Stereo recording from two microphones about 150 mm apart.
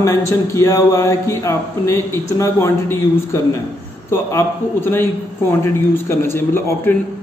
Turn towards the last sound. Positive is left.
turn(degrees=15)  # may be behind; listen again after turning